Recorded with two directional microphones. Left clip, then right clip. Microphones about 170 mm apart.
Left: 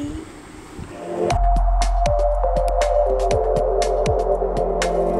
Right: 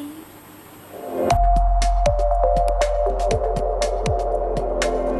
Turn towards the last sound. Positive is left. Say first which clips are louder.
# left 1 dB
turn(degrees=0)  # may be behind; listen again after turning